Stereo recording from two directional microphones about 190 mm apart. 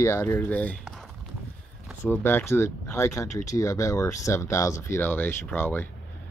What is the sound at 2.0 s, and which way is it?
Speech, 10° left (ahead or behind).